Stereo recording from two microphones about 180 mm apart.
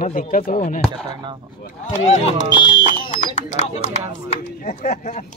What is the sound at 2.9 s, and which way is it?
Speech, 45° left (ahead or behind).